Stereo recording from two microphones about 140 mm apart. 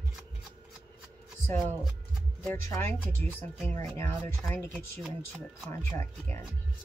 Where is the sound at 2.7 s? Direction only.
15° left (ahead or behind).